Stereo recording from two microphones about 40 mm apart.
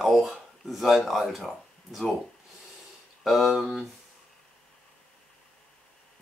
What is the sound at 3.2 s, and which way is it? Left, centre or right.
Speech, centre.